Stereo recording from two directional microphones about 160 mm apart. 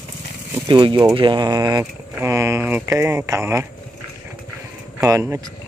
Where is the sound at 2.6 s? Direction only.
10° right (ahead or behind).